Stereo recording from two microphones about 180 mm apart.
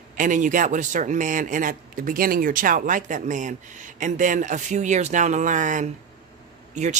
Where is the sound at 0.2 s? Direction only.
45° right (ahead or behind).